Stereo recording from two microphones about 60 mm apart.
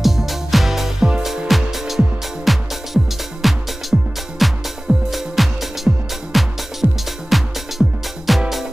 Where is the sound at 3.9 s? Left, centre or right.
Centre.